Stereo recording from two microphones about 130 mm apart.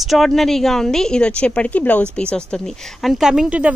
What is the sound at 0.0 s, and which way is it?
A woman's voice, centre (ahead or behind).